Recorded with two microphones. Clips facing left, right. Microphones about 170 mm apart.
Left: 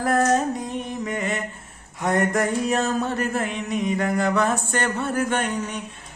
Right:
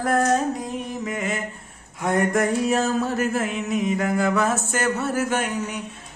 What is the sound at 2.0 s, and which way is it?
A man's voice, centre (ahead or behind).